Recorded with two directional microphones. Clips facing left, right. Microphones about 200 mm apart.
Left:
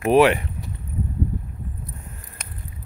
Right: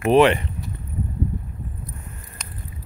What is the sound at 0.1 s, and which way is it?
Speech, 5° left (ahead or behind).